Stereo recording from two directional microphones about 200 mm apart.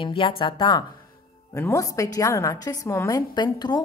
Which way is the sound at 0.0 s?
25° left (ahead or behind).